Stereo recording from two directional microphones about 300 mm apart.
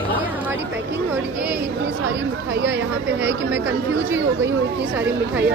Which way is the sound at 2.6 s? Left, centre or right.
Right.